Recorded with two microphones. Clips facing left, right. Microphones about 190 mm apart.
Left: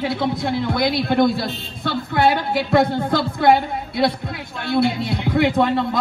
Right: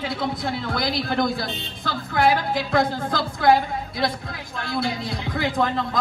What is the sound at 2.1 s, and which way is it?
Speech, 25° left (ahead or behind).